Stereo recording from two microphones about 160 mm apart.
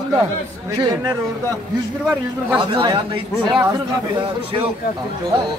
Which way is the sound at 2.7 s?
30° right (ahead or behind).